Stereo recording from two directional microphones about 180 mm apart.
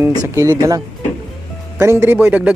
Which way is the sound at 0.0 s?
20° right (ahead or behind).